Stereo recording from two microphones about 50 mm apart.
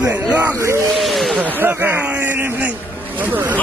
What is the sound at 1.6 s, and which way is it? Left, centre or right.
Speech, right.